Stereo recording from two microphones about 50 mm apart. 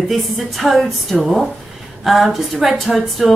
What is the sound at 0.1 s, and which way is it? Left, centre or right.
A woman's voice, centre.